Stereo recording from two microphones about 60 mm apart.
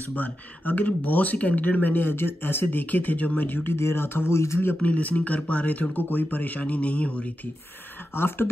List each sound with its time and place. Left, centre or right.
0.1 s speech: left
3.7 s speech: left
4.3 s speech: left
4.8 s speech: left
8.1 s speech: left